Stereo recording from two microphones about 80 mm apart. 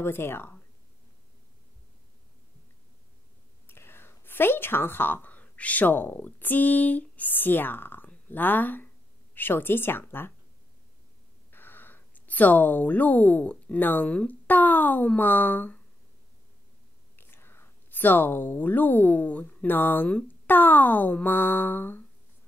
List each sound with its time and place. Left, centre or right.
0.0 s speech: left
3.6 s speech: left
11.5 s speech: left
17.2 s speech: left